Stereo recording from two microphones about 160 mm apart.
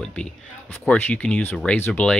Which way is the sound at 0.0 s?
5° left (ahead or behind).